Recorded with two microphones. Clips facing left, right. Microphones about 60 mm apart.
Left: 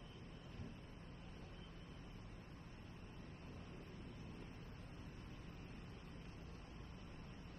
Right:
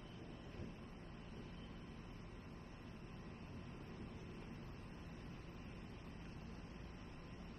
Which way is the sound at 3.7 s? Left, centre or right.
Right.